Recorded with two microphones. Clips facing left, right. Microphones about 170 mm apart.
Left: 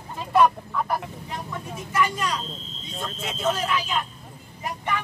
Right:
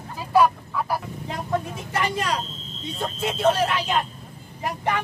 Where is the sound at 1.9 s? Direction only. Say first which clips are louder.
Even; 60° right (ahead or behind).